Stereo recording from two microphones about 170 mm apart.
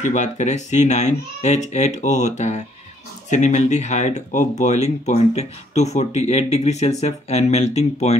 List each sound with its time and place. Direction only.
0.0 s speech: 45° left (ahead or behind)